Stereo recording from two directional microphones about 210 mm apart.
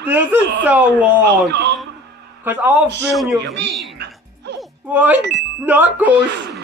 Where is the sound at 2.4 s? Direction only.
10° right (ahead or behind).